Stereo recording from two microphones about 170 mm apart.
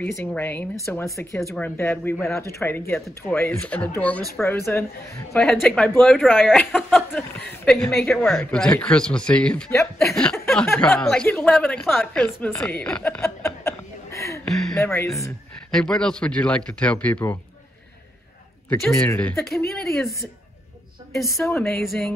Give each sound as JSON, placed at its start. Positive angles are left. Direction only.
{"t": 0.0, "sound": "speech", "side_deg": 10}
{"t": 5.4, "sound": "a woman's voice", "side_deg": 0}
{"t": 15.7, "sound": "speech", "side_deg": 5}
{"t": 18.7, "sound": "speech", "side_deg": 0}
{"t": 21.1, "sound": "speech", "side_deg": 0}